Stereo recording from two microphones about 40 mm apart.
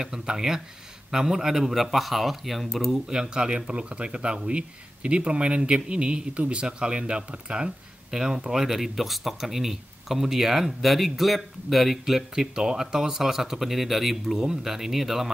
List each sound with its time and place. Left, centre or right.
0.0 s speech: centre
3.1 s speech: right
8.1 s speech: centre